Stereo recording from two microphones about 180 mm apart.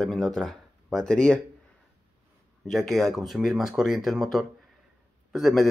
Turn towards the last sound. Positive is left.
turn(degrees=0)  # may be behind; listen again after turning